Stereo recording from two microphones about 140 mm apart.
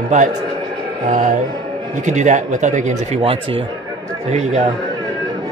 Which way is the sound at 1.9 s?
60° right (ahead or behind).